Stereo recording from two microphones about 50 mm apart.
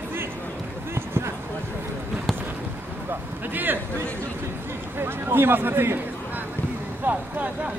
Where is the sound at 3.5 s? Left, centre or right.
Right.